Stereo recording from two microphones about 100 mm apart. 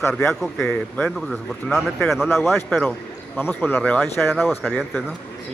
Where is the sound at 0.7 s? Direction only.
10° left (ahead or behind).